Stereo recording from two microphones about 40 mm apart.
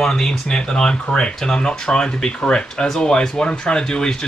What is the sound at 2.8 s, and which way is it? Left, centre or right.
Speech, centre.